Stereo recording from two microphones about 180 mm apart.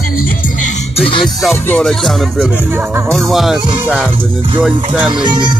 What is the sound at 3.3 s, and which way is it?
Speech, centre (ahead or behind).